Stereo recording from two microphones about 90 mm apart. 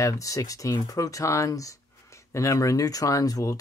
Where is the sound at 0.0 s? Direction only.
40° left (ahead or behind).